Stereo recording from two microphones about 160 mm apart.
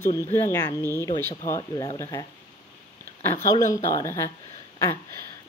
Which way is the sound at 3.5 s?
20° left (ahead or behind).